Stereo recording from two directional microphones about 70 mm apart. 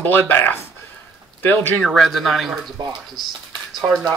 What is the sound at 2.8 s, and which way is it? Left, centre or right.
Speech, right.